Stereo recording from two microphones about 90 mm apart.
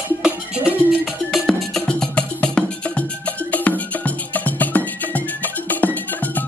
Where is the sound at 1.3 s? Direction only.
5° left (ahead or behind).